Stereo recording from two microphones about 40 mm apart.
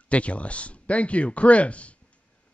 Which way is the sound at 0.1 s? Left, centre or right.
Left.